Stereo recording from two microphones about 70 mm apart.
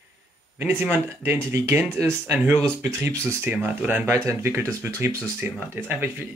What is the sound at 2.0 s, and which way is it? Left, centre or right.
Speech, right.